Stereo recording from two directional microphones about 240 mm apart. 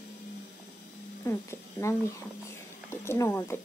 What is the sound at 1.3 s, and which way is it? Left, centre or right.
Speech, centre.